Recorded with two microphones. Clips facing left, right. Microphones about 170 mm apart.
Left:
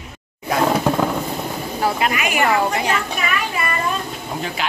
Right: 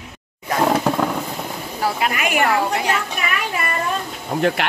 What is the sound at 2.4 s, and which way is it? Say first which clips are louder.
Speech: left 1 dB; centre (ahead or behind).